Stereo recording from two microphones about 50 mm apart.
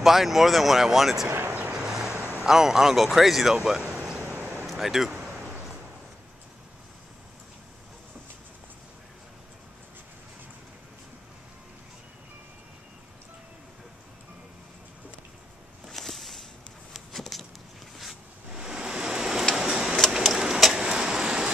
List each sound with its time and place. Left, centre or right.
0.0 s speech: centre
1.5 s vehicle: right
1.8 s vehicle: centre
2.4 s speech: centre
15.9 s a sound: centre
19.5 s tick-tock: centre
20.1 s vehicle: centre